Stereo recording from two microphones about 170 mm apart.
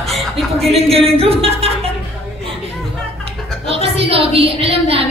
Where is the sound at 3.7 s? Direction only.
35° right (ahead or behind).